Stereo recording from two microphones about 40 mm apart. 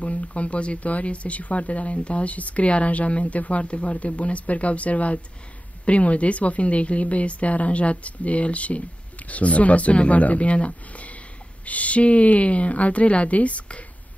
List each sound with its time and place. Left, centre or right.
0.0 s speech: left